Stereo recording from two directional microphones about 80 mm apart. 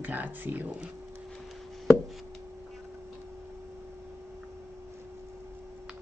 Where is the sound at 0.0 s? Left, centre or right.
Right.